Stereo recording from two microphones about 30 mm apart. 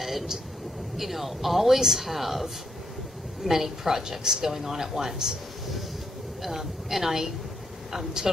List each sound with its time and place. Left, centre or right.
0.0 s a sound: centre
0.9 s speech: centre
3.4 s speech: centre
6.4 s speech: centre